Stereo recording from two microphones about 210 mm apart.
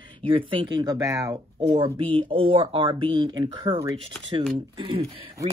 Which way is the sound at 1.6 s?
25° right (ahead or behind).